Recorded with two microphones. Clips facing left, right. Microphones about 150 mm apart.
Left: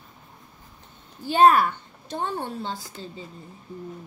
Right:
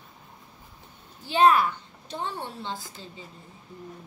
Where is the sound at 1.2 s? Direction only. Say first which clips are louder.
Left 3 dB; 50° left (ahead or behind).